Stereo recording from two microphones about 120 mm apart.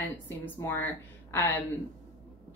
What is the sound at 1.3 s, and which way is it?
Speech, 20° left (ahead or behind).